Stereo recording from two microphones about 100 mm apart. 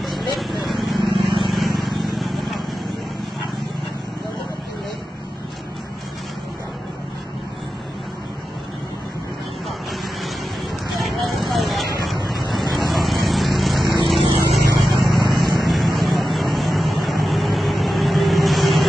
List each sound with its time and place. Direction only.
0.0 s a sound: centre (ahead or behind)
1.2 s vehicle: 55° right (ahead or behind)
1.5 s vehicle: centre (ahead or behind)
11.0 s vehicle: centre (ahead or behind)